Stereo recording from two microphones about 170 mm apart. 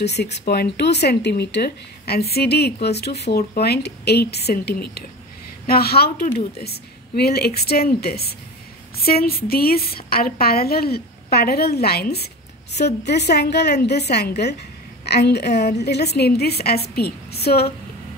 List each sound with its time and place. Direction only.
0.0 s a woman's voice: 80° left
12.8 s a woman's voice: 80° left